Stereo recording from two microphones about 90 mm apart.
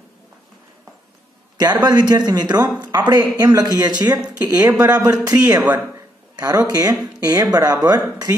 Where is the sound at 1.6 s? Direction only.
50° right (ahead or behind).